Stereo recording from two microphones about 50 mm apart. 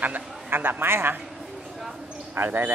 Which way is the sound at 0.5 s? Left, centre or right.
Right.